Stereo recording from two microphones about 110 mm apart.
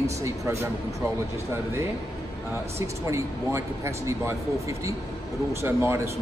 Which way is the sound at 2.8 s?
25° right (ahead or behind).